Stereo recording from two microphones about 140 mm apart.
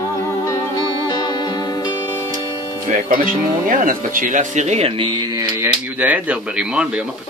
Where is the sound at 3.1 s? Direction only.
75° right (ahead or behind); by 5.1 s 50° right (ahead or behind).